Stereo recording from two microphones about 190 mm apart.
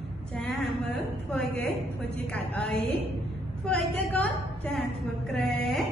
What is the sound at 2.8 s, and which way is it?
Speech, 30° right (ahead or behind).